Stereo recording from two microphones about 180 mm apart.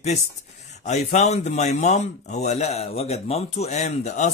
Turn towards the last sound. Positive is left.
turn(degrees=40)  # may be behind; listen again after turning